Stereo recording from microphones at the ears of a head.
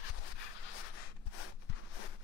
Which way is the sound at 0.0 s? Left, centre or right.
Left.